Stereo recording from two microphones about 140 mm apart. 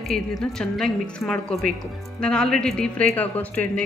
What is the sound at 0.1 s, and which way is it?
A woman's voice, 5° left (ahead or behind).